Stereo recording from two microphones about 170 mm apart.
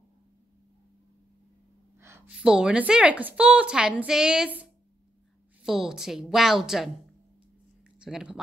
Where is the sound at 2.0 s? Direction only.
10° right (ahead or behind).